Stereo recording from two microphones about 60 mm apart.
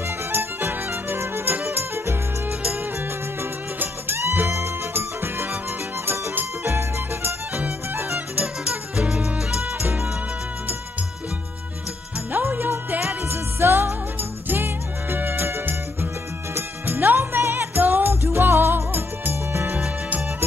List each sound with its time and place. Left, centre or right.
0.3 s music: right
4.9 s music: right
7.5 s music: right
8.6 s music: centre
9.8 s music: right
12.3 s music: right